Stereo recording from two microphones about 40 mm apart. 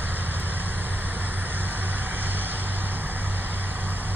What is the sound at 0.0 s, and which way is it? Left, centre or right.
Vehicle, right.